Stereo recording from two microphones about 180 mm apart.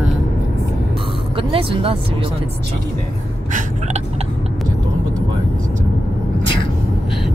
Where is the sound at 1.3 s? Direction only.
30° right (ahead or behind).